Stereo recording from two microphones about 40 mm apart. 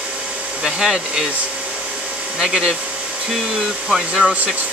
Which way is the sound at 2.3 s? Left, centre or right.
Centre.